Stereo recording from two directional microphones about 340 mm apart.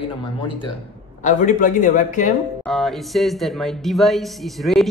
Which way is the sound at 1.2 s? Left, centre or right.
Left.